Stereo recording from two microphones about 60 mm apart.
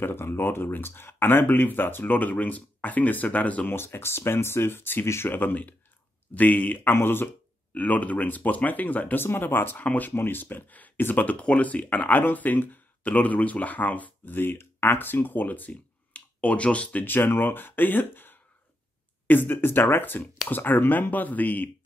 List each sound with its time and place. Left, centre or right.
0.0 s speech: left
3.6 s speech: left
5.3 s speech: left
6.9 s speech: left
7.7 s speech: left
9.2 s speech: left
16.1 s computer keyboard: left
17.0 s speech: left